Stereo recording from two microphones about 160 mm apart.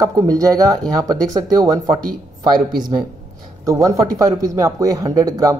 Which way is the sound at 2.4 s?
25° right (ahead or behind).